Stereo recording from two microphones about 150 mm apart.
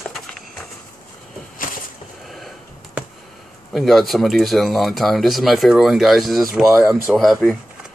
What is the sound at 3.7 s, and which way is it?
Speech, centre (ahead or behind).